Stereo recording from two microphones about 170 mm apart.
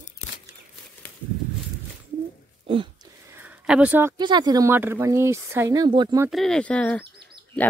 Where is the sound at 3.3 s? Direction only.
10° right (ahead or behind).